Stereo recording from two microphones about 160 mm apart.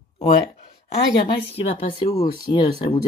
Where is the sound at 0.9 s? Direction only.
35° left (ahead or behind).